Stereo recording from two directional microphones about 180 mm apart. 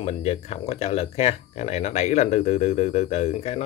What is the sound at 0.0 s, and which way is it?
Speech, 35° left (ahead or behind).